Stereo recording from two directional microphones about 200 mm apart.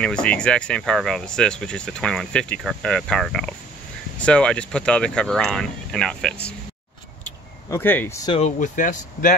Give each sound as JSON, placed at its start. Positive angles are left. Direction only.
{"t": 0.0, "sound": "speech", "side_deg": 5}
{"t": 7.2, "sound": "a sound", "side_deg": 10}
{"t": 8.3, "sound": "speech", "side_deg": 35}